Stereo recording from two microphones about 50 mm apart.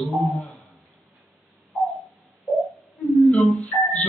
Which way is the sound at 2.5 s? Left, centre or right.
Centre.